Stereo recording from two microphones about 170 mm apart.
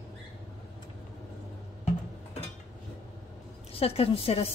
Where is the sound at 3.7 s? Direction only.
35° left (ahead or behind).